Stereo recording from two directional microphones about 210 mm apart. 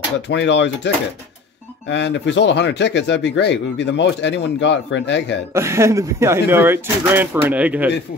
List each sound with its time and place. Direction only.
0.3 s speech: 55° left (ahead or behind)
5.5 s speech: 15° right (ahead or behind)